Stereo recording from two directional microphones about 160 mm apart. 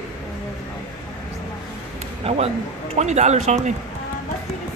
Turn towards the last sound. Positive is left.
turn(degrees=-45)  # may be behind; listen again after turning